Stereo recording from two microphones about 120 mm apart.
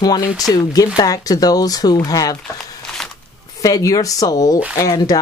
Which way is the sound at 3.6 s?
30° left (ahead or behind).